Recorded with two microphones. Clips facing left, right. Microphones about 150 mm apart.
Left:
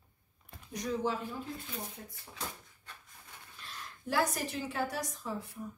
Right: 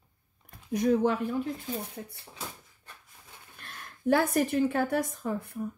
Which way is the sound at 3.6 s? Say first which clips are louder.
Right 6 dB; 55° right (ahead or behind).